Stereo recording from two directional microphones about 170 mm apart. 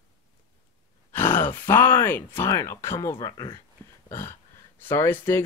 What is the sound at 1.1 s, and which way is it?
Speech, 15° left (ahead or behind).